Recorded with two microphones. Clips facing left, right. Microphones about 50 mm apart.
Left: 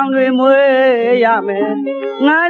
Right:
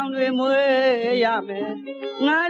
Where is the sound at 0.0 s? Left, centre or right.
Left.